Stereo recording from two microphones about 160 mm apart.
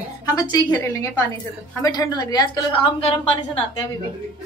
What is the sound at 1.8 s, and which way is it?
A woman's voice, 25° left (ahead or behind).